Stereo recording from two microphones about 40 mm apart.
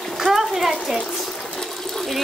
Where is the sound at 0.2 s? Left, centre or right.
Centre.